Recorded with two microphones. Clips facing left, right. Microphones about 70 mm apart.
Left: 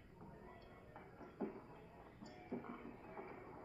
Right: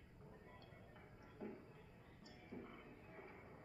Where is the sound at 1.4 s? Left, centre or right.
Left.